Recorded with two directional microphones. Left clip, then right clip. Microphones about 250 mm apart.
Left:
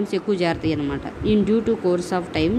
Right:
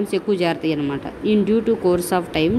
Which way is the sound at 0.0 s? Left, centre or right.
Centre.